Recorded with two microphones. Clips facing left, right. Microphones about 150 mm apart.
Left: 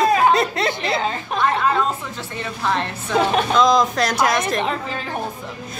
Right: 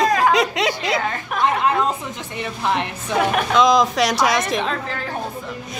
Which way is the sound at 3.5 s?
Centre (ahead or behind).